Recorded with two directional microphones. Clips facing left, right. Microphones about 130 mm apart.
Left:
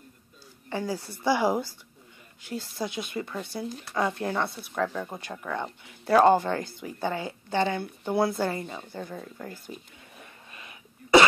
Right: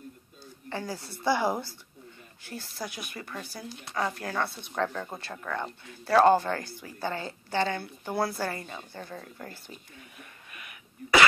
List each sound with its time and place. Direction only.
0.7 s speech: 15° left (ahead or behind)
4.6 s speech: 5° left (ahead or behind); by 9.8 s 20° left (ahead or behind)
10.1 s a sound: 25° left (ahead or behind)